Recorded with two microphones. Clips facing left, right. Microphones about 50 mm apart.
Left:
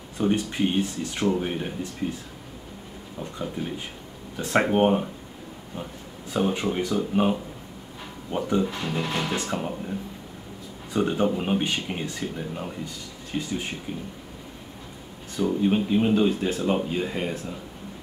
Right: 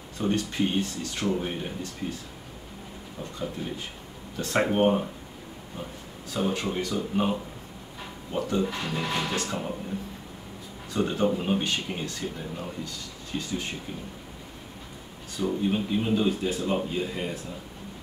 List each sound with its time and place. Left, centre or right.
0.2 s speech: centre
3.2 s speech: centre
6.3 s speech: centre
9.3 s speech: left
10.9 s speech: centre
15.4 s speech: centre